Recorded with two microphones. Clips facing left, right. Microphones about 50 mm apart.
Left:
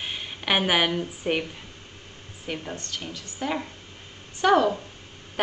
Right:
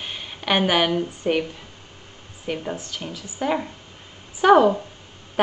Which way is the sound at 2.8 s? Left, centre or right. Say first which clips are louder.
Right 2 dB; centre.